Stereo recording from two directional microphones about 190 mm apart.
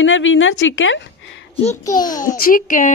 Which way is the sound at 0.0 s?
90° left.